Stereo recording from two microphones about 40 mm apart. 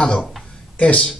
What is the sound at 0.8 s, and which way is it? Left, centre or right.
Speech, left.